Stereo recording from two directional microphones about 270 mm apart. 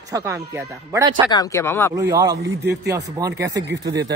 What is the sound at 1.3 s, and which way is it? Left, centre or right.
Speech, centre.